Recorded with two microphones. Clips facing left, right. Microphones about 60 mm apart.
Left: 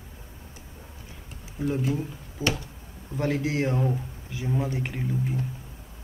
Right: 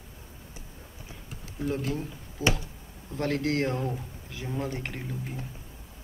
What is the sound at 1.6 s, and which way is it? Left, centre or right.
Speech, centre.